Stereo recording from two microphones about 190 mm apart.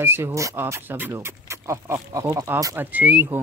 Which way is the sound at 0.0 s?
15° right (ahead or behind).